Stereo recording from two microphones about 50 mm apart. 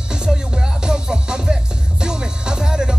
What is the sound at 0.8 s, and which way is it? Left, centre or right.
Music, centre.